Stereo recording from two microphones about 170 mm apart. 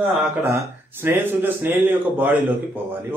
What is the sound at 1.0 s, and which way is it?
A man's voice, 15° right (ahead or behind).